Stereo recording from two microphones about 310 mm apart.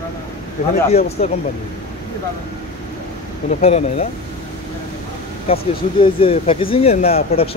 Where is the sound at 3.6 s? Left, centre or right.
Centre.